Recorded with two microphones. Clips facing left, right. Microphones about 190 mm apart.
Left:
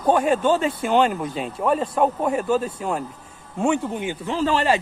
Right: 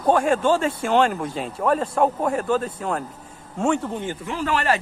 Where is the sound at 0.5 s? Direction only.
5° left (ahead or behind).